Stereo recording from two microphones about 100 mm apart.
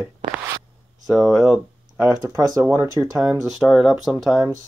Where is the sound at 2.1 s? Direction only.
35° right (ahead or behind).